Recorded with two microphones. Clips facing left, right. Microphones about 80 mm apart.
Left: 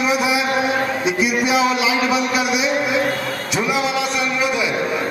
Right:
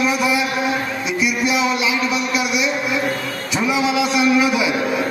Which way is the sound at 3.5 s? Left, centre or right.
Centre.